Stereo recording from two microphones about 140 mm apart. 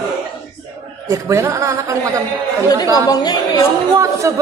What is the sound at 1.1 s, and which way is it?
Speech, 20° right (ahead or behind).